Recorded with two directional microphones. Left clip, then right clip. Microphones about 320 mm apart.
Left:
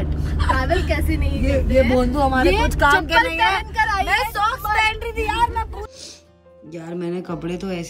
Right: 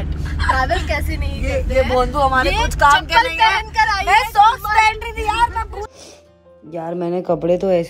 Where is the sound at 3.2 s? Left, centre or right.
Centre.